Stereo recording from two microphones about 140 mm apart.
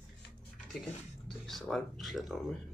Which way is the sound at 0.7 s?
Centre (ahead or behind).